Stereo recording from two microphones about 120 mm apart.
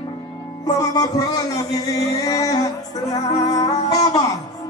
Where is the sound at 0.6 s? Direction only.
30° left (ahead or behind).